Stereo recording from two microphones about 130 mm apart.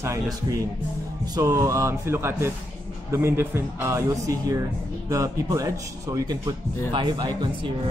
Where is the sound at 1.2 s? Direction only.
30° right (ahead or behind).